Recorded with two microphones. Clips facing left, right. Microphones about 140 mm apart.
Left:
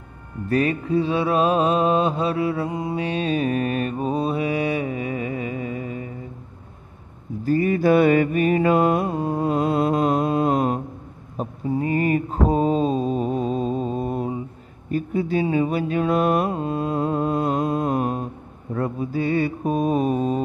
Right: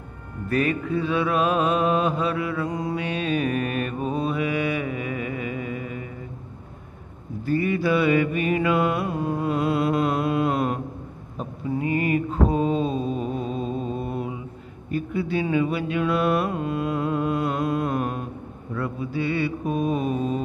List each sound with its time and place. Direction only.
0.5 s mantra: 35° left (ahead or behind)
7.4 s mantra: 40° left (ahead or behind)